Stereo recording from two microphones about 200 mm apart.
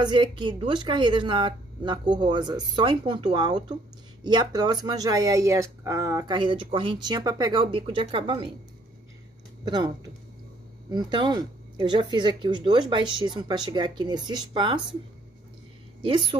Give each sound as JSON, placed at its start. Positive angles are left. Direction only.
{"t": 0.0, "sound": "speech", "side_deg": -25}
{"t": 9.7, "sound": "speech", "side_deg": -20}
{"t": 16.0, "sound": "speech", "side_deg": -25}